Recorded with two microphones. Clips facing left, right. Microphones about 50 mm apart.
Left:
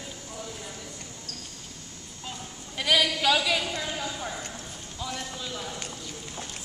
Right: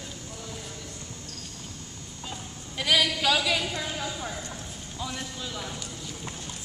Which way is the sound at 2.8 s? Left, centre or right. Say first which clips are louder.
Even; centre.